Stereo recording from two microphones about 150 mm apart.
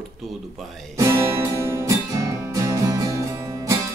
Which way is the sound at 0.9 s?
20° right (ahead or behind).